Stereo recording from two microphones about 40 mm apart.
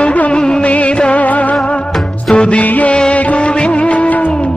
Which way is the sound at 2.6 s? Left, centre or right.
Left.